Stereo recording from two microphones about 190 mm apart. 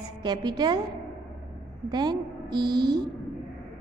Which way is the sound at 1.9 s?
20° right (ahead or behind).